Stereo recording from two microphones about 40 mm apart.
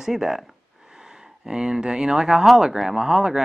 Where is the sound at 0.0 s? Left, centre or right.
Centre.